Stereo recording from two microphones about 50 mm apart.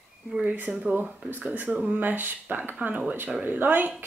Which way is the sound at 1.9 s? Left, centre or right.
Right.